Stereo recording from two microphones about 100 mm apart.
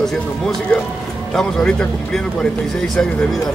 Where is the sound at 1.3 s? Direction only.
5° left (ahead or behind).